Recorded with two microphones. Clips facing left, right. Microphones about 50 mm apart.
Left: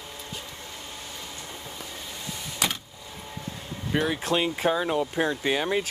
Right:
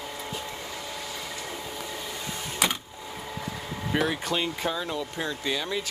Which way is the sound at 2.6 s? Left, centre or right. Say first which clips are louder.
Right 2 dB; centre.